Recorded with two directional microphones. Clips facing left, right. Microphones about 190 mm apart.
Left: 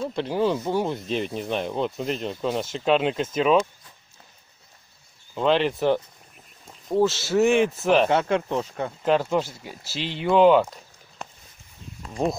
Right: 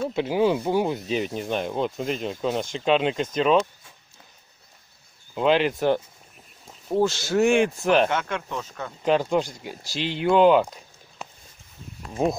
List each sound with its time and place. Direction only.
0.0 s speech: 5° right (ahead or behind)
5.3 s speech: 5° right (ahead or behind)
8.1 s speech: 30° left (ahead or behind)
9.0 s speech: centre (ahead or behind)